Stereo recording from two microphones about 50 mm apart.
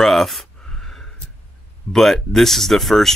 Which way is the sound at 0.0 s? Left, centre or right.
Centre.